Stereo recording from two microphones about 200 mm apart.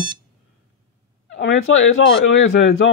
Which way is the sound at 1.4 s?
65° left (ahead or behind).